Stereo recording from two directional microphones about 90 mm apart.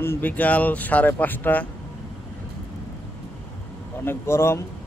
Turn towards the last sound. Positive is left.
turn(degrees=30)  # may be behind; listen again after turning